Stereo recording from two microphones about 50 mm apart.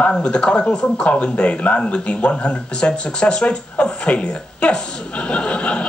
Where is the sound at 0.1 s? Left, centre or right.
Centre.